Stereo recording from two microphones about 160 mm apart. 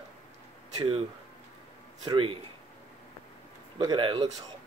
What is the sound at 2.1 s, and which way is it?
Speech, 35° right (ahead or behind).